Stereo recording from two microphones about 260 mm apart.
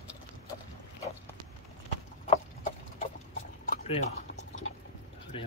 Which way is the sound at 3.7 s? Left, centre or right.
Left.